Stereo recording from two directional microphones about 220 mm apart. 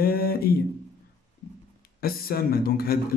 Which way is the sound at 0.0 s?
45° left (ahead or behind).